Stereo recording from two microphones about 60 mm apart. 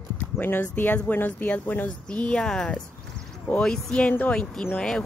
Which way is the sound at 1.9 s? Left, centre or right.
Centre.